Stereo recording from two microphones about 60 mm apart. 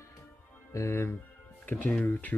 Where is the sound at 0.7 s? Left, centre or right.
Left.